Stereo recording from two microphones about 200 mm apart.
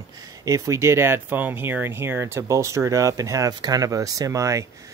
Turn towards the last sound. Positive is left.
turn(degrees=-15)  # may be behind; listen again after turning